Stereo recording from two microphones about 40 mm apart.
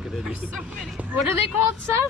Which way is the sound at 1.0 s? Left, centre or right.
Right.